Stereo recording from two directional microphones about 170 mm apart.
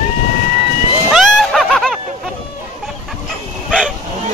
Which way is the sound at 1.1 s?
Centre (ahead or behind).